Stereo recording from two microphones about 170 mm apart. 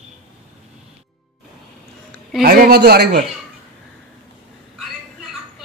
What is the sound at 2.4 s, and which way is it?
Speech, 60° right (ahead or behind).